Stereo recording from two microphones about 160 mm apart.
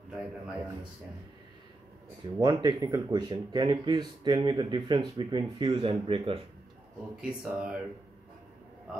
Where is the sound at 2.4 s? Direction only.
25° right (ahead or behind).